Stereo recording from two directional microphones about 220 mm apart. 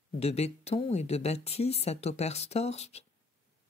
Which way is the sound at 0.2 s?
30° left (ahead or behind).